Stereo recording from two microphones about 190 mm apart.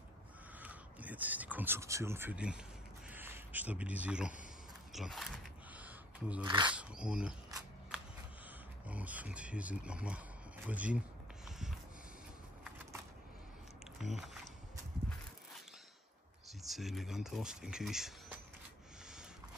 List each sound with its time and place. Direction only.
0.6 s crow: 10° right (ahead or behind)
3.1 s a sound: 10° right (ahead or behind)
6.4 s speech: 25° right (ahead or behind)
6.7 s speech: 5° right (ahead or behind)
8.8 s speech: 5° right (ahead or behind)
14.0 s speech: centre (ahead or behind)
16.6 s speech: centre (ahead or behind)